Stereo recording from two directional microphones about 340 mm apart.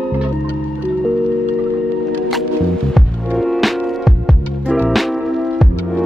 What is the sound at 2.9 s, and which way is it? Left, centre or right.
Music, centre.